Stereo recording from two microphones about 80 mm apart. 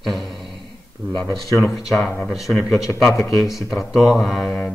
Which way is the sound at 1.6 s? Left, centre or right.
Centre.